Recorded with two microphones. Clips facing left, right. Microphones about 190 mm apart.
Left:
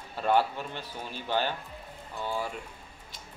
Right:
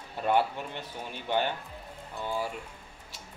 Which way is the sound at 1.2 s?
15° right (ahead or behind).